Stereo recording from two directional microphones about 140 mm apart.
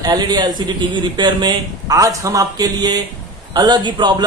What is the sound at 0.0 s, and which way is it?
Speech, 30° right (ahead or behind).